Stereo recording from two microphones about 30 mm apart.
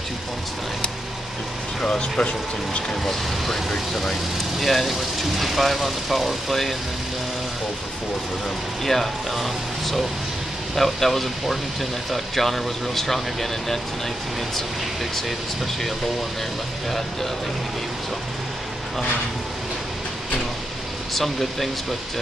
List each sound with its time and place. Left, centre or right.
2.0 s speech: left
2.9 s speech: centre
8.8 s speech: centre
15.1 s speech: centre
21.1 s speech: centre